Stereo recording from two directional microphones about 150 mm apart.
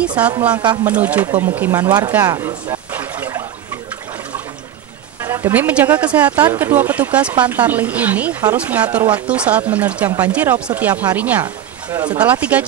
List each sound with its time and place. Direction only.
0.2 s speech: 10° right (ahead or behind)
2.2 s a sound: 20° right (ahead or behind)
5.2 s a woman's voice: 15° right (ahead or behind)
11.4 s speech: 30° right (ahead or behind)
12.2 s speech: 10° right (ahead or behind)